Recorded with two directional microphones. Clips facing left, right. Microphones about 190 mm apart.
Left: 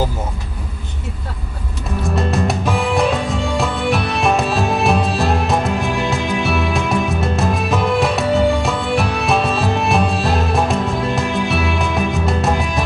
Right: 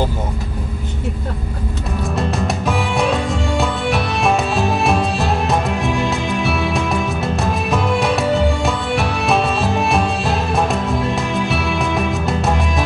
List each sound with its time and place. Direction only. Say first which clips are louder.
2.0 s music: left 2 dB; centre (ahead or behind)